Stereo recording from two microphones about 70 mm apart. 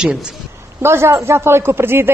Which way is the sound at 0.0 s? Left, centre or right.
Centre.